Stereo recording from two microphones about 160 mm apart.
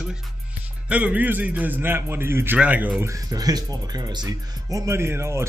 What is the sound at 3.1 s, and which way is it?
Speech, 20° right (ahead or behind).